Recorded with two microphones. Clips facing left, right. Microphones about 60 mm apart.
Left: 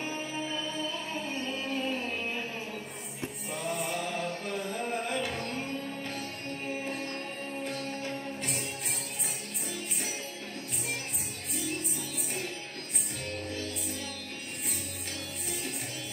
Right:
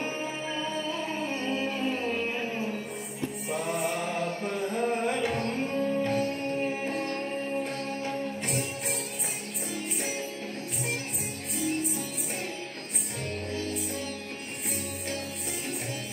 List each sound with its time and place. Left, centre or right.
5.8 s music: right